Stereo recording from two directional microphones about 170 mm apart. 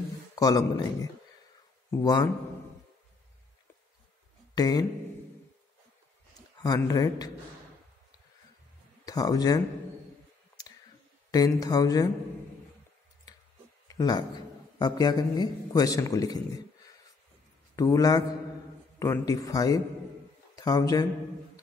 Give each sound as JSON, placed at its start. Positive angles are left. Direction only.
{"t": 0.4, "sound": "a man's voice", "side_deg": 20}
{"t": 4.6, "sound": "a man's voice", "side_deg": 20}
{"t": 6.6, "sound": "a man's voice", "side_deg": 20}
{"t": 9.0, "sound": "speech", "side_deg": 20}
{"t": 11.3, "sound": "a man's voice", "side_deg": 20}
{"t": 13.8, "sound": "a man's voice", "side_deg": 25}